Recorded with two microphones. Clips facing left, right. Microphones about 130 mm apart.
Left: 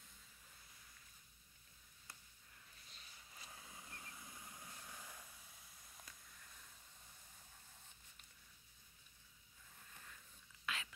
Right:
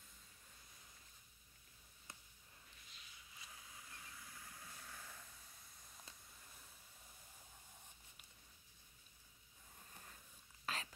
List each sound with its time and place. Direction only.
2.9 s vehicle: 35° left (ahead or behind); by 5.2 s 15° left (ahead or behind)
9.8 s whispering: 30° right (ahead or behind)